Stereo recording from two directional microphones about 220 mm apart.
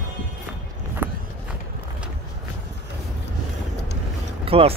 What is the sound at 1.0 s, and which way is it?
Walk, 10° right (ahead or behind).